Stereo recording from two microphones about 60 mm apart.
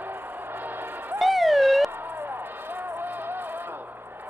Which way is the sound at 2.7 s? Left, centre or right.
Right.